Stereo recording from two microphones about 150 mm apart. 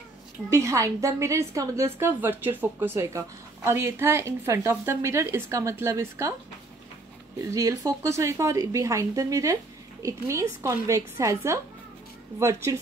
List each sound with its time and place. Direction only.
0.5 s speech: 20° right (ahead or behind)
7.5 s speech: 20° right (ahead or behind)